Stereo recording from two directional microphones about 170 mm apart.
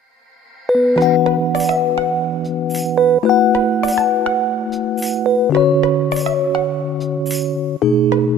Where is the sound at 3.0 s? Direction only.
Centre (ahead or behind).